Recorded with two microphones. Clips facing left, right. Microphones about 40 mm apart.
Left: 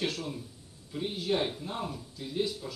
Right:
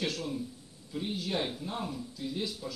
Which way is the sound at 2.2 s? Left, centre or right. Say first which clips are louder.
Left 5 dB; centre.